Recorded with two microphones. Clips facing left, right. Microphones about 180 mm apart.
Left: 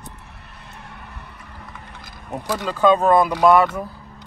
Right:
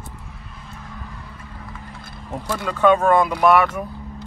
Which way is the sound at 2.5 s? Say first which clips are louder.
Even; 15° left (ahead or behind).